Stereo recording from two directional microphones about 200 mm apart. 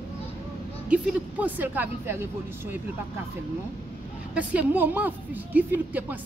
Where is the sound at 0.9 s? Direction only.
10° right (ahead or behind).